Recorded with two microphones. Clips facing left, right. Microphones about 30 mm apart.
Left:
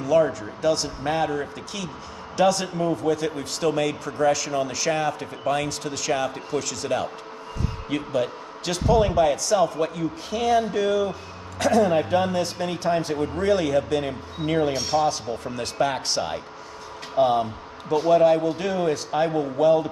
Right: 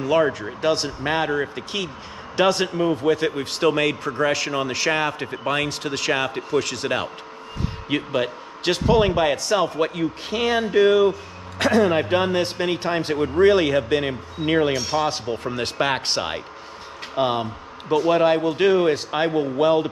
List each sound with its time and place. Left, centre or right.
0.0 s a man's voice: right
17.1 s a man's voice: right